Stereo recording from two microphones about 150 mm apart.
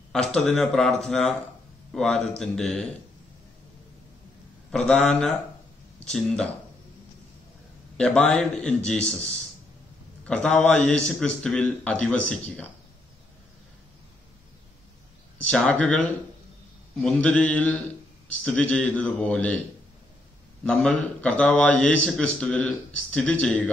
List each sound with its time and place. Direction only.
0.1 s speech: 5° left (ahead or behind)
4.6 s speech: 5° left (ahead or behind)
8.0 s speech: 5° left (ahead or behind)
10.2 s a man's voice: 5° left (ahead or behind)
15.4 s a man's voice: 5° left (ahead or behind)
20.6 s a man's voice: 5° left (ahead or behind)